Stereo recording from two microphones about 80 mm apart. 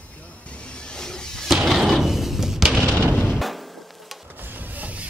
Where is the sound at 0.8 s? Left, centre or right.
Centre.